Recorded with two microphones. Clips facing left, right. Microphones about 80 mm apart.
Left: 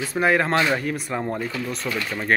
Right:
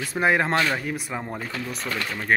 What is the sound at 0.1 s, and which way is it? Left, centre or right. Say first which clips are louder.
Speech: left 1 dB; right.